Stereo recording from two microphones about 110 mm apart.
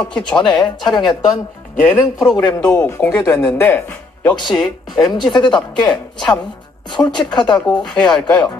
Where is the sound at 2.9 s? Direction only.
25° left (ahead or behind).